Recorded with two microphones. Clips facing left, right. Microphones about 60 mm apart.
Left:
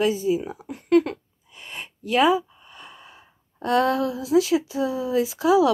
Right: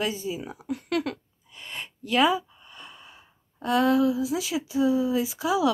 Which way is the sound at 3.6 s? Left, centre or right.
Left.